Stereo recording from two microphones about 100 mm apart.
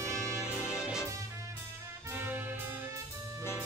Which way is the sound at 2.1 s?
20° right (ahead or behind).